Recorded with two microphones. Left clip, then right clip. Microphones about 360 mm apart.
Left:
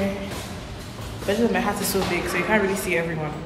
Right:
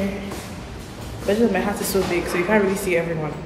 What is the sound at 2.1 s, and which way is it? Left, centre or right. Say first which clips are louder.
Speech: right 2 dB; centre.